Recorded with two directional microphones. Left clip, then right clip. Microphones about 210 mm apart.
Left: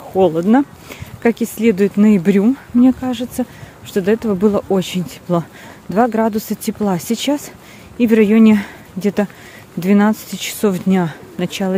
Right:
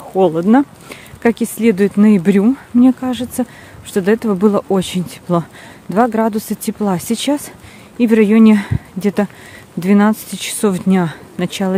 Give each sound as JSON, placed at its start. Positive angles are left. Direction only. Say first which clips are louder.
{"t": 0.1, "sound": "speech", "louder": "right 1 dB", "side_deg": -10}